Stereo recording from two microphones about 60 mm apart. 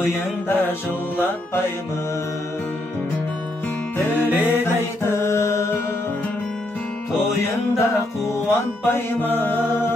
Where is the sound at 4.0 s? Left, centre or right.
Left.